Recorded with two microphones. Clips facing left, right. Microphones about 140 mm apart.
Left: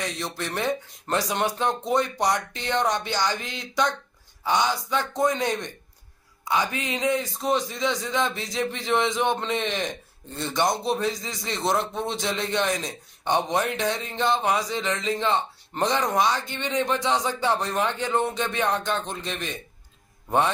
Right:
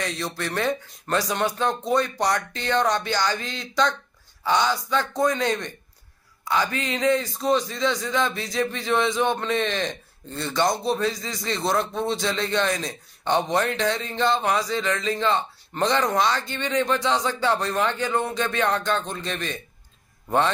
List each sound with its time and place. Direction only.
0.0 s a man's voice: 15° left (ahead or behind)